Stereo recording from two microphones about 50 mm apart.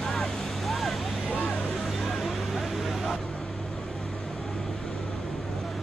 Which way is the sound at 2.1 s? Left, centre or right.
Centre.